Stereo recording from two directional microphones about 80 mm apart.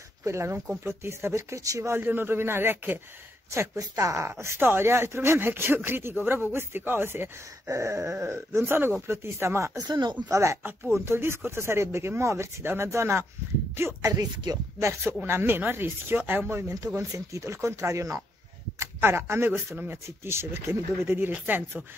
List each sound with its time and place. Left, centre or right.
0.2 s speech: right
3.5 s speech: right
9.8 s speech: right
10.3 s speech: right
14.1 s speech: right
14.8 s speech: right
16.7 s speech: right